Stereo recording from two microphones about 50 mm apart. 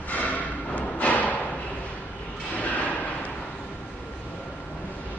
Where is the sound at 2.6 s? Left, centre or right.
Left.